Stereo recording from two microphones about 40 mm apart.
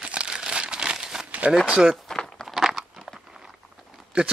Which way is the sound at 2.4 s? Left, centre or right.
Centre.